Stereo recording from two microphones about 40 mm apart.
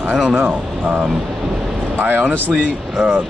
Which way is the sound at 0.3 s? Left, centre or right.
Right.